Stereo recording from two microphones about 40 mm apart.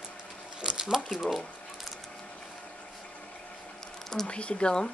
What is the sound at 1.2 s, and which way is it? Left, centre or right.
Speech, centre.